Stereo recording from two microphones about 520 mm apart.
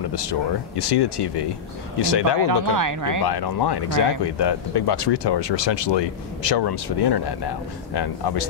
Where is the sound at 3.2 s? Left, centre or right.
Left.